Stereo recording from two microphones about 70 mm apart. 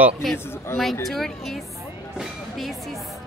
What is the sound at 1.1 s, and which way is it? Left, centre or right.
Speech, centre.